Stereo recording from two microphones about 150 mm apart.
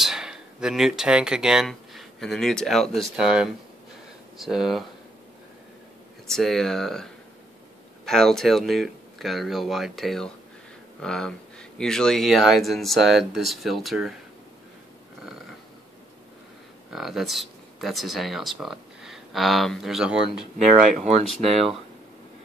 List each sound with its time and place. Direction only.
0.0 s speech: 5° right (ahead or behind)
6.3 s speech: centre (ahead or behind)
16.9 s speech: centre (ahead or behind)
20.7 s speech: 60° right (ahead or behind)
21.3 s speech: centre (ahead or behind)